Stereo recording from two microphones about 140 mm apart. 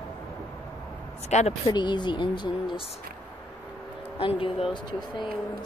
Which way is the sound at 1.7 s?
35° left (ahead or behind).